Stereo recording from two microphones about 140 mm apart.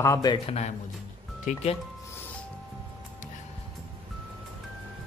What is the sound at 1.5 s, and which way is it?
Speech, 65° left (ahead or behind).